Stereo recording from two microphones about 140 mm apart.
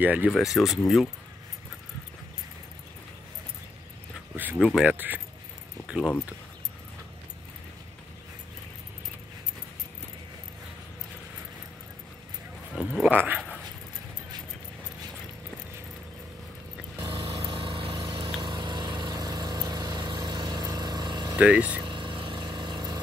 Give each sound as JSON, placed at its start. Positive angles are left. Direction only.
{"t": 0.0, "sound": "speech", "side_deg": -10}
{"t": 4.4, "sound": "speech", "side_deg": -10}
{"t": 12.7, "sound": "speech", "side_deg": -5}
{"t": 17.1, "sound": "vehicle", "side_deg": -40}
{"t": 21.4, "sound": "speech", "side_deg": -10}
{"t": 21.8, "sound": "vehicle", "side_deg": -35}